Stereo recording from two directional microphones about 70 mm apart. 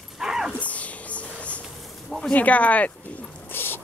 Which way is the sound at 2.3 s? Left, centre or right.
Left.